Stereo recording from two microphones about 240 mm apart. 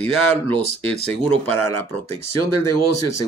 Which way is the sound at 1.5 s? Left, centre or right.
Left.